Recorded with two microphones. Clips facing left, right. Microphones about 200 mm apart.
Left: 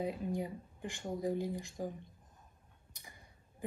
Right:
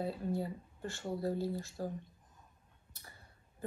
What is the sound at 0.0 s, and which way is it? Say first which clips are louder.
Speech: even; 15° left (ahead or behind).